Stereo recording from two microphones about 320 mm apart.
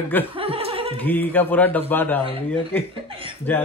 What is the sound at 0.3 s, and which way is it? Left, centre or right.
Chuckle, centre.